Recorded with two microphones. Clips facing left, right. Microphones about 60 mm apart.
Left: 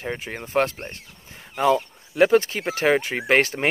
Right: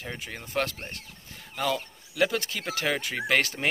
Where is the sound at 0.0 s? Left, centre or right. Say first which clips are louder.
Left 7 dB; left.